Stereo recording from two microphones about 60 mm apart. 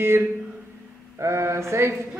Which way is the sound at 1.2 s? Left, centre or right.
Right.